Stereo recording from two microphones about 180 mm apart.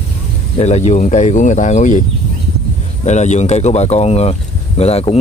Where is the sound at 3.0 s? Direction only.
40° left (ahead or behind).